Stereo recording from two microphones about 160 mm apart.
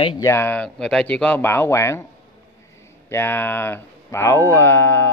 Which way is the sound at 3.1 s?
15° left (ahead or behind).